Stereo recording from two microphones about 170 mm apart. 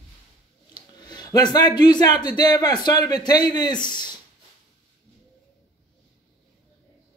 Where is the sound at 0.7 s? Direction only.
25° left (ahead or behind).